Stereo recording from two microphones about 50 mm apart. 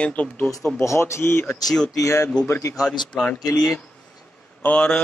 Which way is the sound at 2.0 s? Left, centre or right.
Left.